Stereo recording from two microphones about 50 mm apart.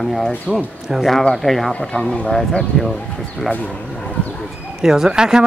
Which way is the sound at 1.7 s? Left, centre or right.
Left.